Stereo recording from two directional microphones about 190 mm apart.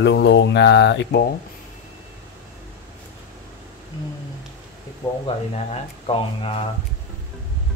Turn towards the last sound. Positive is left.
turn(degrees=30)  # may be behind; listen again after turning